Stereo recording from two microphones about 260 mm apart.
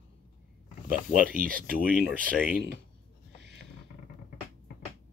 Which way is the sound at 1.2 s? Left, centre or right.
Right.